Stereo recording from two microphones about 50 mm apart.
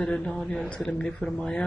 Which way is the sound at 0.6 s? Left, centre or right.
Left.